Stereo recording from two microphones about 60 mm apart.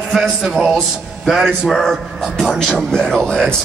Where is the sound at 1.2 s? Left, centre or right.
Centre.